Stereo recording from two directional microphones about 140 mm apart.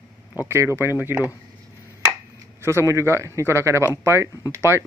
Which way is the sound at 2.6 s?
20° right (ahead or behind).